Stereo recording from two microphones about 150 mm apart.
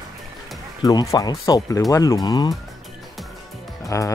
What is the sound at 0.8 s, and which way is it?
Speech, 25° left (ahead or behind).